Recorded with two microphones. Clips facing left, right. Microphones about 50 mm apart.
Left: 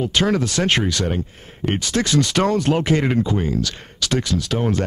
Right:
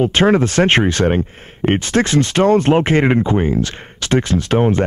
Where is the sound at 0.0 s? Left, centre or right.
Right.